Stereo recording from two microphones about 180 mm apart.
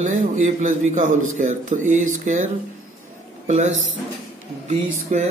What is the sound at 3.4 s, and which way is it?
Speech, 40° right (ahead or behind).